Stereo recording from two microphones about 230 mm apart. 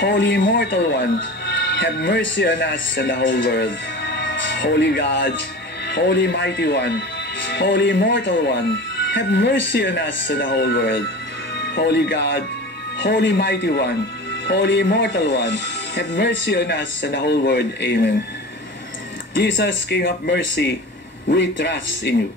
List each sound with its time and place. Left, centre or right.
0.0 s speech: left
4.1 s music: left
5.9 s speech: left
19.3 s speech: left